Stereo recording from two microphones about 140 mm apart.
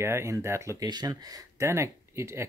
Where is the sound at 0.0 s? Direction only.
20° right (ahead or behind).